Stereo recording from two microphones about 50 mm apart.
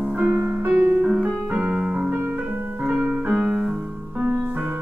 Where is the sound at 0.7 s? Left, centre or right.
Right.